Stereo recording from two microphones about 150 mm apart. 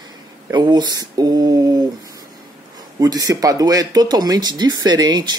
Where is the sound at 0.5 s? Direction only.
30° right (ahead or behind).